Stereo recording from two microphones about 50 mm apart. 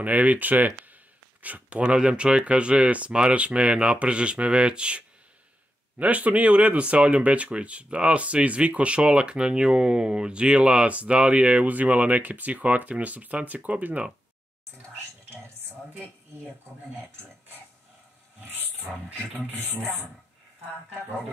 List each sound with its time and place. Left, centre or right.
0.0 s speech: right